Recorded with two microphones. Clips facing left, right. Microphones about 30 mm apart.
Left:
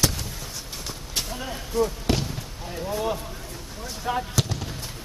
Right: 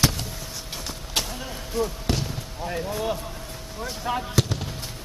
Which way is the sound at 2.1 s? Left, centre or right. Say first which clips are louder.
Left 2 dB; centre.